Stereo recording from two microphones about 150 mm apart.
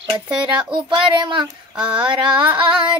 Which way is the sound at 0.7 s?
30° right (ahead or behind).